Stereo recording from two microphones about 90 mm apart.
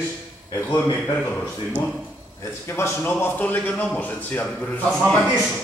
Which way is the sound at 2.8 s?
25° left (ahead or behind).